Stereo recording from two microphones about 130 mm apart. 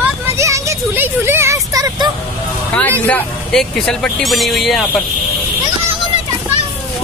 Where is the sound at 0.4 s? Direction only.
20° right (ahead or behind).